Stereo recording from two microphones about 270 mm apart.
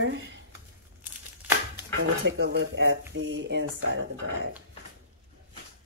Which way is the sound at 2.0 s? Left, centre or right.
Right.